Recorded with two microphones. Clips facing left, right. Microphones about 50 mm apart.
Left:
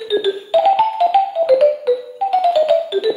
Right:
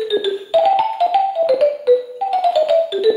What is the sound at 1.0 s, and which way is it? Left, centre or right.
Music, left.